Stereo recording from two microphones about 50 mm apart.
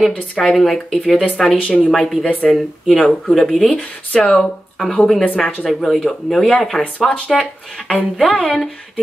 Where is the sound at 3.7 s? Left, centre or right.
Centre.